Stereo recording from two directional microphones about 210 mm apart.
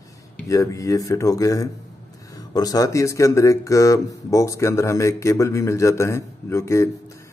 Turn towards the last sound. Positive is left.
turn(degrees=15)  # may be behind; listen again after turning